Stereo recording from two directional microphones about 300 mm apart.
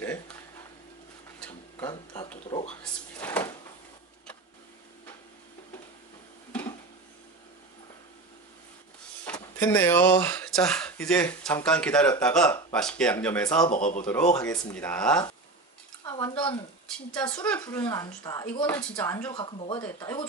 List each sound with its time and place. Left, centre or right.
1.4 s a sound: centre
9.2 s speech: centre
13.7 s speech: left
14.3 s a woman's voice: centre
16.0 s a sound: centre
16.8 s a woman's voice: centre